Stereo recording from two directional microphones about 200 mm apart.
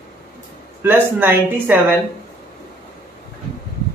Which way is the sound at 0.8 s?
10° right (ahead or behind).